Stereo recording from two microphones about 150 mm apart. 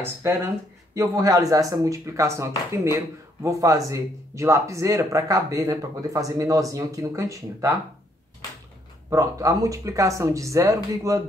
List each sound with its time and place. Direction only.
0.0 s speech: 15° right (ahead or behind)
9.1 s speech: 20° right (ahead or behind)